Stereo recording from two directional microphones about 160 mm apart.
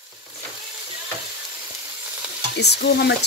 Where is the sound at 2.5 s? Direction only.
90° left.